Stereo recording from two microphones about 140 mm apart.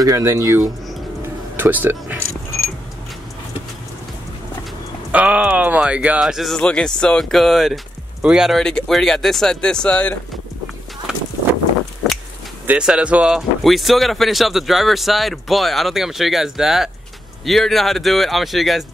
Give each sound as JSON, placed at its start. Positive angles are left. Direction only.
{"t": 0.0, "sound": "speech", "side_deg": -25}
{"t": 1.6, "sound": "speech", "side_deg": -15}
{"t": 5.1, "sound": "speech", "side_deg": -10}
{"t": 12.0, "sound": "a sound", "side_deg": 0}
{"t": 12.6, "sound": "speech", "side_deg": -5}